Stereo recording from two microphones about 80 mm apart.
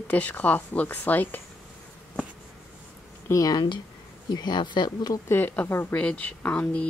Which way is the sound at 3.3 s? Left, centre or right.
Left.